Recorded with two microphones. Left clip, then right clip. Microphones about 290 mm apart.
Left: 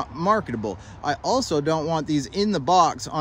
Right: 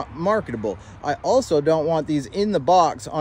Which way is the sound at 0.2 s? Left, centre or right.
Centre.